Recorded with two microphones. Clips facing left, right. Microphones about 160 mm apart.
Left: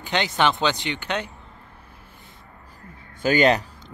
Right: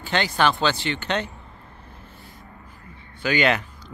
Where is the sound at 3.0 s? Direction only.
45° left (ahead or behind).